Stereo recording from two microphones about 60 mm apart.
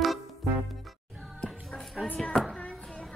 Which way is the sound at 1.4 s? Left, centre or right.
Centre.